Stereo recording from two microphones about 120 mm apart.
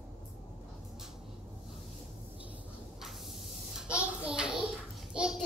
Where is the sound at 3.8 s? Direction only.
10° right (ahead or behind).